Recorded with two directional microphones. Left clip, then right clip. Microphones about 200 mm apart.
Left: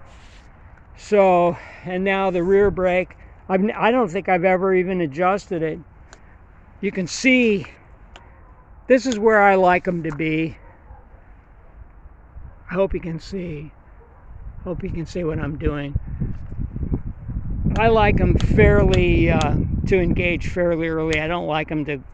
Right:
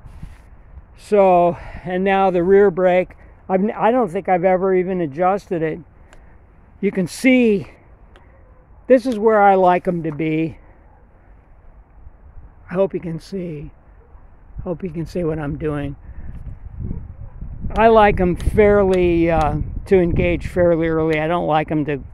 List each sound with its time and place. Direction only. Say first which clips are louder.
0.9 s speech: right 2 dB; 15° right (ahead or behind)
3.4 s speech: right 2 dB; 10° right (ahead or behind)
6.8 s speech: right 3 dB; 35° right (ahead or behind)
8.8 s speech: right 2 dB; 15° right (ahead or behind)
12.6 s speech: right 2 dB; 20° right (ahead or behind)
17.6 s speech: right 5 dB; 40° right (ahead or behind)
18.3 s speech: right 3 dB; 25° right (ahead or behind)